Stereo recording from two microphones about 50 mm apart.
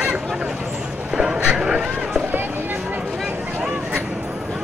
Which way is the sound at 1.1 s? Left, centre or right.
Centre.